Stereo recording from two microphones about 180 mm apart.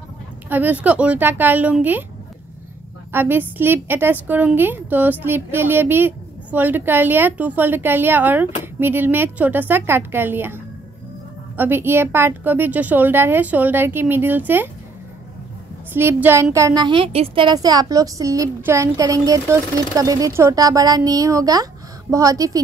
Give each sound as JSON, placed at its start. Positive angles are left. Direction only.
{"t": 0.5, "sound": "a woman's voice", "side_deg": -10}
{"t": 3.1, "sound": "a woman's voice", "side_deg": -10}
{"t": 15.9, "sound": "a woman's voice", "side_deg": -10}